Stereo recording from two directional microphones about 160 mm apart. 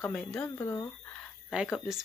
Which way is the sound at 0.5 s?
20° left (ahead or behind).